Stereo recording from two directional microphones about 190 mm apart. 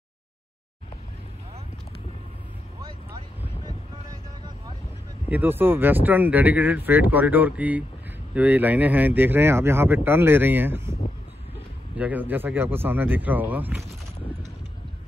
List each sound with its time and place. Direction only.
3.4 s boat: 20° right (ahead or behind)
5.3 s speech: 10° right (ahead or behind)
12.0 s speech: 10° right (ahead or behind)